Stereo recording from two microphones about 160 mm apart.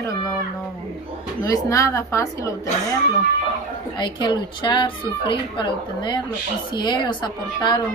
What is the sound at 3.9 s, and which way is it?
A woman's voice, 30° left (ahead or behind).